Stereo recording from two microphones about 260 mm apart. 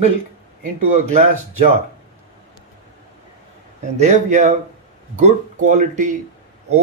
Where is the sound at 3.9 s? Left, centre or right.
Right.